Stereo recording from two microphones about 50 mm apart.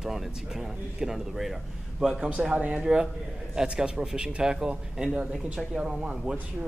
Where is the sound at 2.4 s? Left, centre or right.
Centre.